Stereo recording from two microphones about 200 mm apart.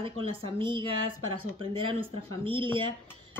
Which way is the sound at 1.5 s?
25° right (ahead or behind).